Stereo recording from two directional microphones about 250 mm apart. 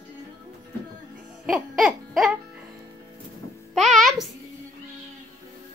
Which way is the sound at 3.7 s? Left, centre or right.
Centre.